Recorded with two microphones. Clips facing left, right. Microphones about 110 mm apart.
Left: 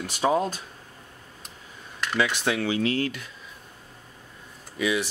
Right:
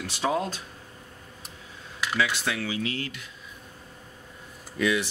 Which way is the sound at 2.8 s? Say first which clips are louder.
Left 6 dB; 45° left (ahead or behind).